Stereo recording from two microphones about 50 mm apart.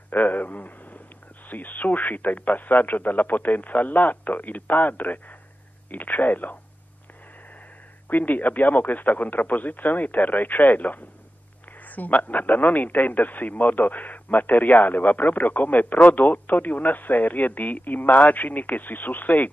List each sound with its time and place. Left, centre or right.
0.1 s a sound: left
1.5 s a man's voice: left
8.1 s a man's voice: left